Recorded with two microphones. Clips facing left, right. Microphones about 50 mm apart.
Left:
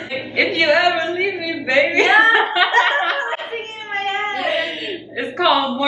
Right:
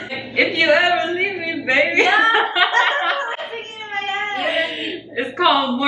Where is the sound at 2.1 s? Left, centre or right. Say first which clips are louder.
Left 2 dB; left.